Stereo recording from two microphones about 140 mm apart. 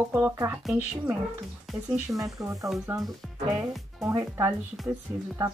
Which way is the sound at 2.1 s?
25° right (ahead or behind).